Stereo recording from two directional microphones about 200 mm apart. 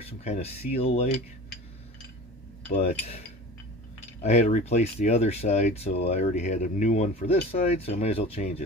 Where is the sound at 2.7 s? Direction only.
30° left (ahead or behind).